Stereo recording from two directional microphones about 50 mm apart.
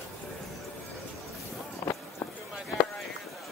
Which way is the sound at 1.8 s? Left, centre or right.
Left.